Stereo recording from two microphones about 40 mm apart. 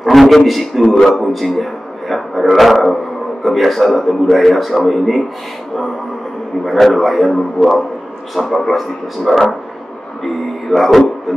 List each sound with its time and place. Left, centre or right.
0.0 s a man's voice: centre
0.9 s a man's voice: centre
1.2 s a man's voice: centre
6.6 s a man's voice: centre